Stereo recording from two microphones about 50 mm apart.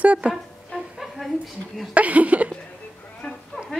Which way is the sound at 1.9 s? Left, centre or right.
Right.